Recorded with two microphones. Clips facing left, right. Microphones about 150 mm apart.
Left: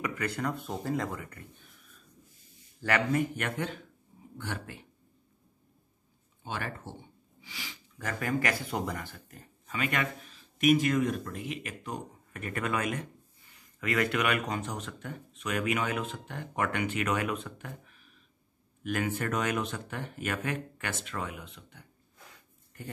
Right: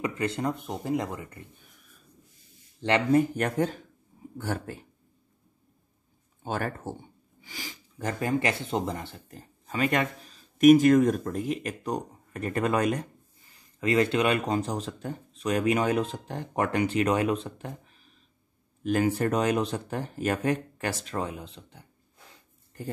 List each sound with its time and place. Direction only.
0.0 s speech: 25° right (ahead or behind)
2.8 s speech: 30° right (ahead or behind)
6.4 s speech: 45° right (ahead or behind)
8.0 s speech: 30° right (ahead or behind)